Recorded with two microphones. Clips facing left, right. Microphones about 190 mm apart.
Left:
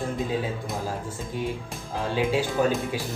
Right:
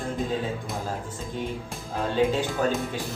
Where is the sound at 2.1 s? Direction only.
5° left (ahead or behind).